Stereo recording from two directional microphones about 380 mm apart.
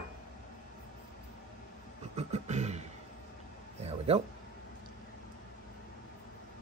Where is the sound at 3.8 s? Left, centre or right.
Centre.